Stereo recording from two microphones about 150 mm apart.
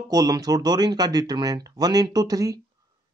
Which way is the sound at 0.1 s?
25° right (ahead or behind).